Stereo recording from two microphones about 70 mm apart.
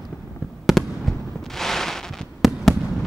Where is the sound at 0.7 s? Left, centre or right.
Centre.